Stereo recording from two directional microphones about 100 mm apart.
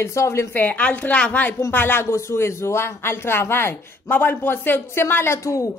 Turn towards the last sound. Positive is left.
turn(degrees=30)  # may be behind; listen again after turning